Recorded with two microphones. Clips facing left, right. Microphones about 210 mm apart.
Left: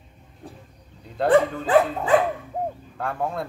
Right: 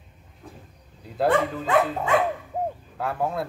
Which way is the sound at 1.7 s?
35° left (ahead or behind).